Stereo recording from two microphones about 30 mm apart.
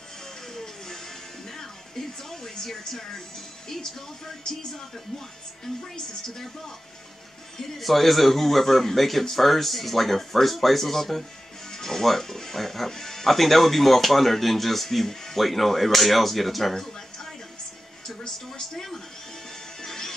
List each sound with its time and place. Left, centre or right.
1.6 s music: centre
2.6 s a woman's voice: centre
7.8 s speech: centre
16.7 s music: centre
19.8 s music: centre